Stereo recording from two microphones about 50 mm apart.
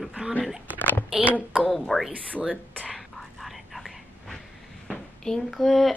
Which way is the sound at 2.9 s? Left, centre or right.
Centre.